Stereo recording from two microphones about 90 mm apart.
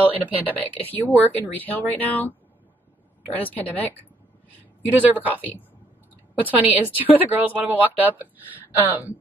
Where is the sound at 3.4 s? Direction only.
20° left (ahead or behind).